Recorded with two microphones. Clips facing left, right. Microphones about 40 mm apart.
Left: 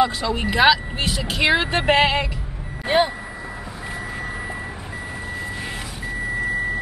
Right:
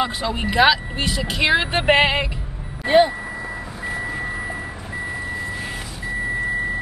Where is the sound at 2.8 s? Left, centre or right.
Centre.